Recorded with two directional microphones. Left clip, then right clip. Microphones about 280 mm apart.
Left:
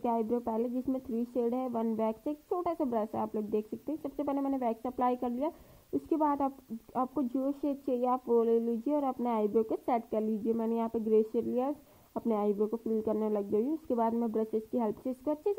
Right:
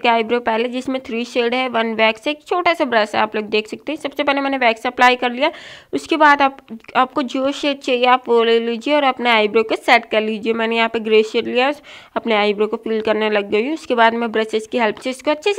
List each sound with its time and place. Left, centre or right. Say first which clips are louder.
0.0 s speech: right 16 dB; right